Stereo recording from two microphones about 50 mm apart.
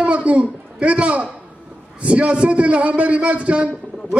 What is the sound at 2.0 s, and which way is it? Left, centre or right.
A man's voice, right.